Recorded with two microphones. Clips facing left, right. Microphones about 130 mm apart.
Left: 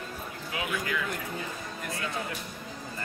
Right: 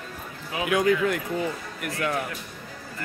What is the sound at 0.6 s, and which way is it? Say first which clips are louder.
Speech: right 12 dB; 90° right.